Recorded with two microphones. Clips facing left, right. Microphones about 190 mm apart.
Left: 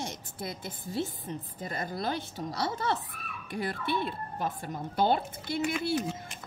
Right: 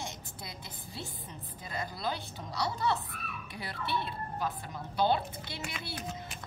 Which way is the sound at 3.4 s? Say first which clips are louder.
Left 7 dB; 50° left (ahead or behind).